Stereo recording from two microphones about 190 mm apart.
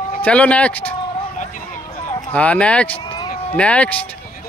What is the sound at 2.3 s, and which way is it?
Speech, 5° left (ahead or behind).